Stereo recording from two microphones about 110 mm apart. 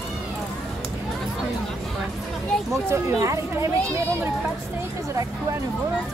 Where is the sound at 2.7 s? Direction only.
25° right (ahead or behind).